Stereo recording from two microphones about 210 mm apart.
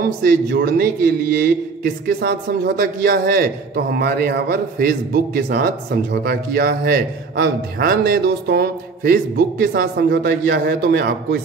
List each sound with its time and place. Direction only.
0.0 s a man's voice: 45° right (ahead or behind)